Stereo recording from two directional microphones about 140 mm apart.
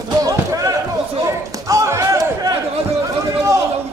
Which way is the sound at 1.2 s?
20° right (ahead or behind).